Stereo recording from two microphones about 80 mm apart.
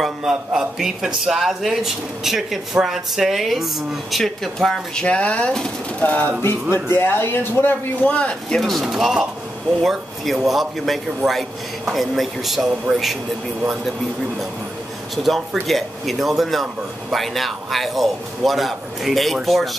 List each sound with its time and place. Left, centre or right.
0.0 s a man's voice: centre
5.0 s speech: centre
6.4 s speech: left
8.5 s a man's voice: centre
15.6 s a man's voice: centre